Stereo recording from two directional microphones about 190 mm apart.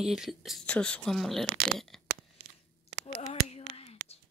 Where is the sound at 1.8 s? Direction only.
Centre (ahead or behind).